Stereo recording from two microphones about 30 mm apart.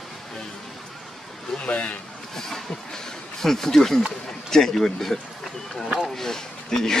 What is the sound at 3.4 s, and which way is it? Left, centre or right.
Speech, centre.